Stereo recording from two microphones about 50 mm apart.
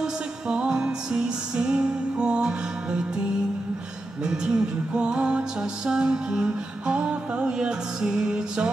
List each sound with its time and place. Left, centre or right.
0.0 s music: centre
4.2 s music: centre